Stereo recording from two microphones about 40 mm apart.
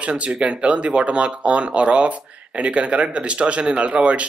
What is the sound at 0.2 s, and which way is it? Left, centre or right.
Speech, right.